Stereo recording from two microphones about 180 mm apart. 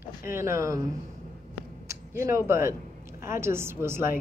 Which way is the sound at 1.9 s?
15° right (ahead or behind).